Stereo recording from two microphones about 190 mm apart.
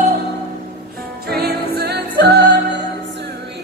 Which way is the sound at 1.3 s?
55° right (ahead or behind).